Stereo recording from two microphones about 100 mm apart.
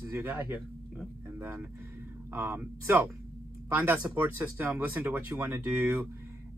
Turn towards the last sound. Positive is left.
turn(degrees=-20)  # may be behind; listen again after turning